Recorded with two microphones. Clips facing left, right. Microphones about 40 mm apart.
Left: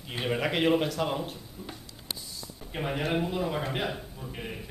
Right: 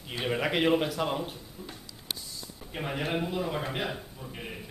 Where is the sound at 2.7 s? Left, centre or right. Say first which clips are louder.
Left 2 dB; centre.